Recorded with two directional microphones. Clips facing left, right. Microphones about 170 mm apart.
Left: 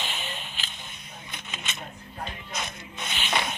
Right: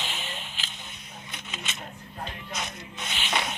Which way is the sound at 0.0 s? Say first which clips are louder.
Left 1 dB; 55° left (ahead or behind).